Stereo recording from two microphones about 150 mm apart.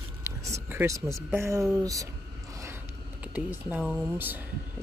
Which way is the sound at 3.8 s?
5° left (ahead or behind).